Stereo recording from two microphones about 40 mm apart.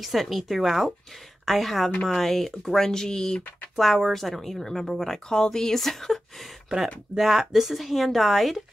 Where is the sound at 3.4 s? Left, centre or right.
Left.